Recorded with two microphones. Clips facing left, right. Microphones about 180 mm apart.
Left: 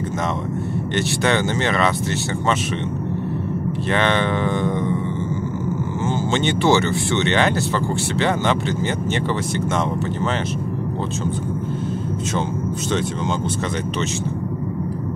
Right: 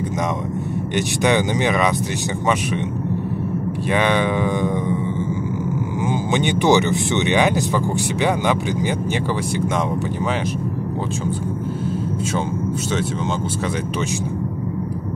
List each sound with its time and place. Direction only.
0.9 s speech: 15° right (ahead or behind)
3.9 s speech: 10° right (ahead or behind)
6.0 s speech: 15° right (ahead or behind)